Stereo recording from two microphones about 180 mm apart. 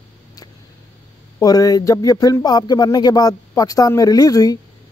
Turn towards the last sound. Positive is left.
turn(degrees=20)  # may be behind; listen again after turning